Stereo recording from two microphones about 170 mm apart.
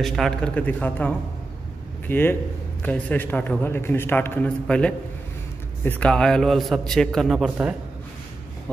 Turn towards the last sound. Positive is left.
turn(degrees=-5)  # may be behind; listen again after turning